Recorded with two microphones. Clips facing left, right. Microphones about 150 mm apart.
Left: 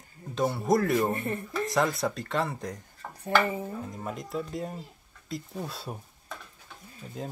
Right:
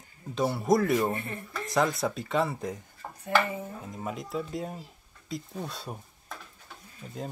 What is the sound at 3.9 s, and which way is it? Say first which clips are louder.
Speech: even; centre (ahead or behind).